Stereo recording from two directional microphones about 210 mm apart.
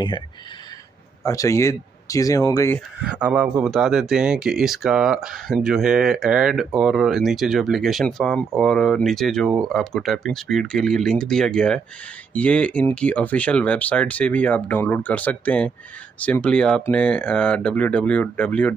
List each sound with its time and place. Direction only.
1.2 s speech: 15° left (ahead or behind)
3.2 s speech: 5° right (ahead or behind)